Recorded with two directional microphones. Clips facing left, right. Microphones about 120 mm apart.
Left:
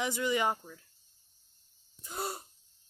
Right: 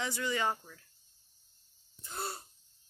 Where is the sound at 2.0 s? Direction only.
10° left (ahead or behind).